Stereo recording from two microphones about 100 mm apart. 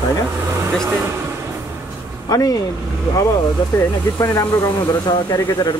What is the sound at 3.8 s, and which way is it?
Speech, 30° left (ahead or behind).